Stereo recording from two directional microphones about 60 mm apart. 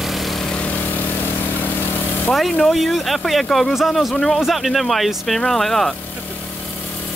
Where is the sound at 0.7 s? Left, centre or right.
Left.